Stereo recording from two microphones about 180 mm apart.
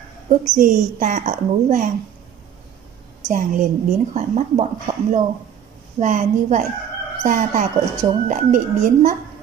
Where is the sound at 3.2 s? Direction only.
45° right (ahead or behind).